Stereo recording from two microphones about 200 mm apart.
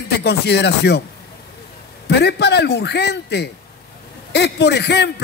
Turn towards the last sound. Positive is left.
turn(degrees=55)  # may be behind; listen again after turning